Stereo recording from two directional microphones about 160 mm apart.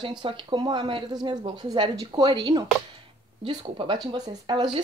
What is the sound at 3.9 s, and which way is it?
Speech, 25° right (ahead or behind).